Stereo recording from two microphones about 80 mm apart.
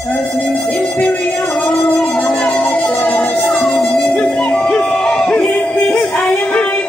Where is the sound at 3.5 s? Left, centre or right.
Centre.